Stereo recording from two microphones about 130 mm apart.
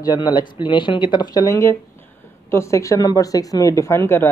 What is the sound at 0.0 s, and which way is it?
Speech, 30° left (ahead or behind).